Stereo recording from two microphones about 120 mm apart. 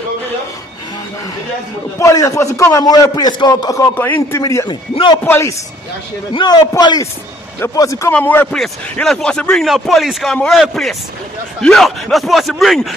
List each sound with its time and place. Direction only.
2.0 s a man's voice: 25° left (ahead or behind)
3.9 s a man's voice: 15° left (ahead or behind)
4.6 s a man's voice: 40° left (ahead or behind)
5.2 s a man's voice: 20° left (ahead or behind)
6.3 s a man's voice: 35° left (ahead or behind)
8.1 s speech: 15° left (ahead or behind)